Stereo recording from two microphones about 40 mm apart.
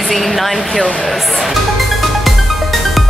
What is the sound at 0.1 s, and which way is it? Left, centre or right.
Speech, centre.